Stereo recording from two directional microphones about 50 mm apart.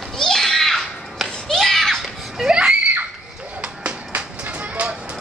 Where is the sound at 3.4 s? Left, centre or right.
Right.